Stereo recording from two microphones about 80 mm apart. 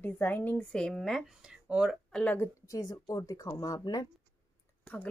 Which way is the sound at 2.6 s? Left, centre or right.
Left.